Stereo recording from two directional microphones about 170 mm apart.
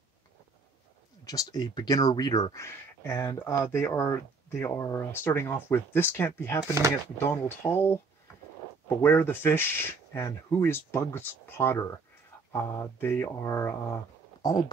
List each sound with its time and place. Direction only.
1.2 s speech: 20° left (ahead or behind)